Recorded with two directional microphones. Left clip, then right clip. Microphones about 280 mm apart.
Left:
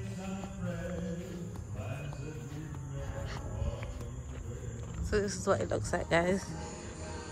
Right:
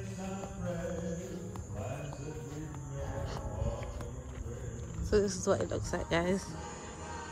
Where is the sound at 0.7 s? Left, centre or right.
Right.